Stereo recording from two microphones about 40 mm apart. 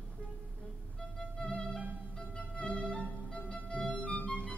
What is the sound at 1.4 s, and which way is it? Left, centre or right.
Music, left.